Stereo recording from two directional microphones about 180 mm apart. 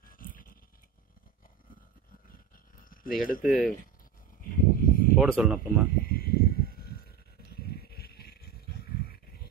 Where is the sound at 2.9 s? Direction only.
50° left (ahead or behind).